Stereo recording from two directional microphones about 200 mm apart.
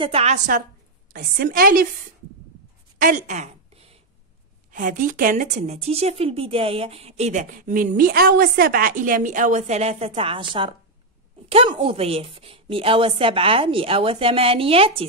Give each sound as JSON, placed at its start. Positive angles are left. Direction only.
{"t": 0.0, "sound": "a woman's voice", "side_deg": -30}
{"t": 3.0, "sound": "a sound", "side_deg": -40}
{"t": 4.7, "sound": "a woman's voice", "side_deg": -40}